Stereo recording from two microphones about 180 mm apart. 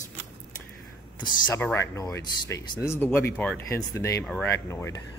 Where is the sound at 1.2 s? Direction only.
25° left (ahead or behind).